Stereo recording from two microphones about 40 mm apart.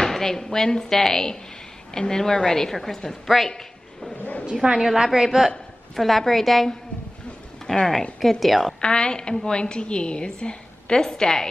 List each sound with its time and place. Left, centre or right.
0.0 s a woman's voice: centre
3.4 s a sound: centre
4.2 s a sound: left
4.7 s a woman's voice: centre
5.9 s a woman's voice: centre
8.2 s a woman's voice: centre
8.8 s a woman's voice: left